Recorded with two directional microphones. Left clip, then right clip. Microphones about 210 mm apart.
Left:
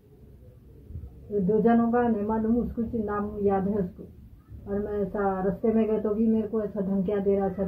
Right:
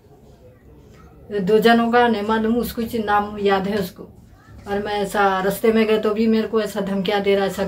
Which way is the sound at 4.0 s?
25° right (ahead or behind).